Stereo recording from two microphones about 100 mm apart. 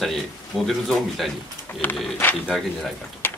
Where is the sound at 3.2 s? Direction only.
20° left (ahead or behind).